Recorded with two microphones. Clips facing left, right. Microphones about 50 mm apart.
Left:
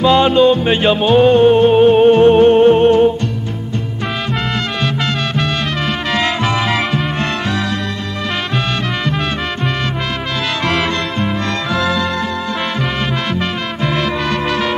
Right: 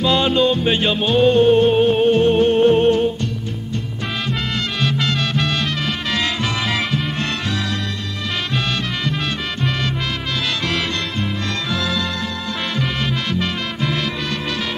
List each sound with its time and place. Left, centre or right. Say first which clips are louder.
0.0 s music: left 6 dB; left
4.8 s music: left 2 dB; left
10.6 s music: left 5 dB; left
13.4 s music: left 3 dB; left